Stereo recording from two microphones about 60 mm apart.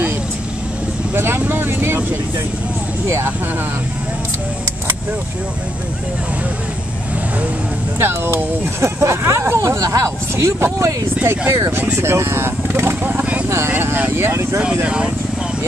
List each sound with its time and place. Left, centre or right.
1.1 s vehicle: right
8.0 s speech: right
10.3 s speech: right